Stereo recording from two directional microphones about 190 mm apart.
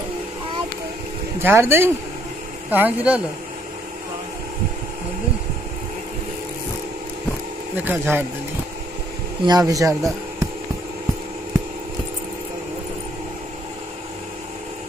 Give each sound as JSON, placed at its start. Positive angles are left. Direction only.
{"t": 1.4, "sound": "speech", "side_deg": -10}
{"t": 7.7, "sound": "speech", "side_deg": -10}
{"t": 9.4, "sound": "speech", "side_deg": -20}